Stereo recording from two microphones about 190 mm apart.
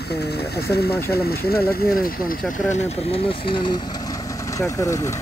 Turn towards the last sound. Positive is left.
turn(degrees=15)  # may be behind; listen again after turning